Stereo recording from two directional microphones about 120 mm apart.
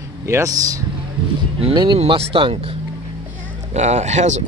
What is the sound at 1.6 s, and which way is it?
Speech, 40° right (ahead or behind).